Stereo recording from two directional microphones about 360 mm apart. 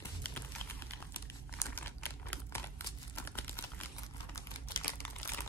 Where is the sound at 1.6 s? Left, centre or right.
Centre.